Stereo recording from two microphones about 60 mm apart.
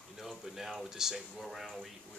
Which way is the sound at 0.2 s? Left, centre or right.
Centre.